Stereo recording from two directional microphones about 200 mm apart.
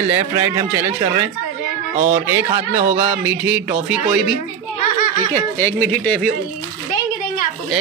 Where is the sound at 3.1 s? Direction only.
10° right (ahead or behind).